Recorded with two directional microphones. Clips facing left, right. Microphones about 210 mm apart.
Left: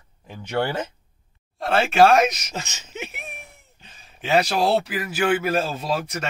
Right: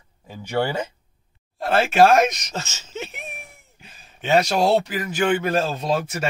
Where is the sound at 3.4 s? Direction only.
10° right (ahead or behind).